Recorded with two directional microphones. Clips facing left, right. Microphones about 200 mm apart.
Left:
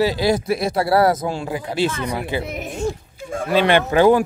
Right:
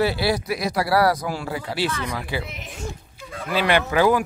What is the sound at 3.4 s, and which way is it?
Speech, 25° left (ahead or behind).